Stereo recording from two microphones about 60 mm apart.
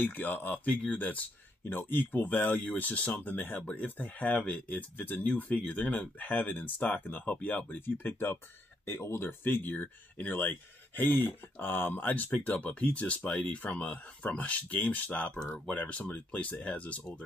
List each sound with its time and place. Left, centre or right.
0.0 s speech: left
1.6 s speech: left